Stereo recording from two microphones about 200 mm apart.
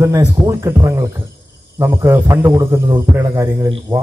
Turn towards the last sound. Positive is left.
turn(degrees=-15)  # may be behind; listen again after turning